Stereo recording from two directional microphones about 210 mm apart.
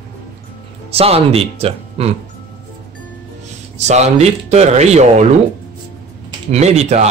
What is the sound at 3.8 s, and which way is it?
Speech, 30° right (ahead or behind).